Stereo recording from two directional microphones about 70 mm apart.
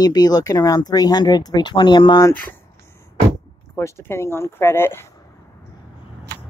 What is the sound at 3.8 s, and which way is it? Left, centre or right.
Speech, left.